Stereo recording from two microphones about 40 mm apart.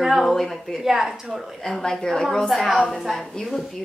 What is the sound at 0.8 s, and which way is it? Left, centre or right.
Speech, centre.